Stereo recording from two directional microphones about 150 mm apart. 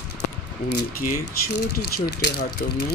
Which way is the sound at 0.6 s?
80° left.